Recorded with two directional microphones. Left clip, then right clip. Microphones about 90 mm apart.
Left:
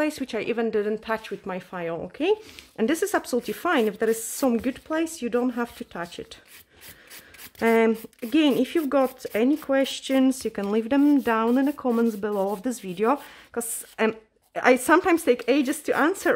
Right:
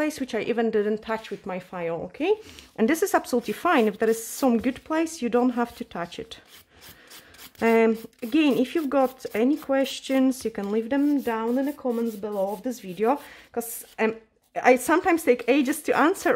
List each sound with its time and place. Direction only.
0.0 s a woman's voice: 5° right (ahead or behind)
1.0 s speech: 5° left (ahead or behind)
2.8 s a woman's voice: 15° right (ahead or behind)
4.8 s speech: 25° right (ahead or behind)
7.5 s speech: centre (ahead or behind)
10.6 s speech: 25° left (ahead or behind)
11.1 s speech: 45° left (ahead or behind)
11.4 s speech: 65° left (ahead or behind)
12.6 s a woman's voice: 35° left (ahead or behind); by 15.1 s 15° left (ahead or behind)
15.1 s a woman's voice: centre (ahead or behind)